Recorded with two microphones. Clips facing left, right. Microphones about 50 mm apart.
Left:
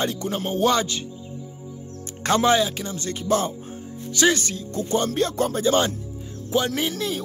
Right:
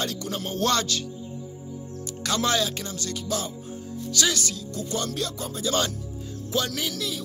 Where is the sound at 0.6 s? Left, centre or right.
Centre.